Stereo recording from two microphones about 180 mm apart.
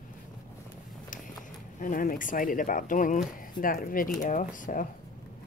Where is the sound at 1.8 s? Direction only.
50° left (ahead or behind).